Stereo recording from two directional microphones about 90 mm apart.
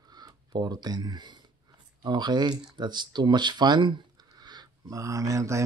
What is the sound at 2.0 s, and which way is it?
Speech, 55° right (ahead or behind).